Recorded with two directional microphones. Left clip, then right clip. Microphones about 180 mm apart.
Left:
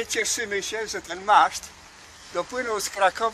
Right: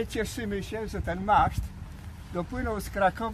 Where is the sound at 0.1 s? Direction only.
35° right (ahead or behind).